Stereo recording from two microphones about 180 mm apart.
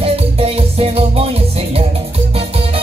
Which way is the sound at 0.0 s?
35° right (ahead or behind).